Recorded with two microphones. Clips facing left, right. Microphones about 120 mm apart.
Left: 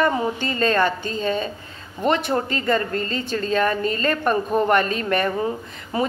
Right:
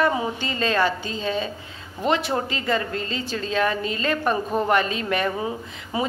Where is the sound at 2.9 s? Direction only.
45° left (ahead or behind).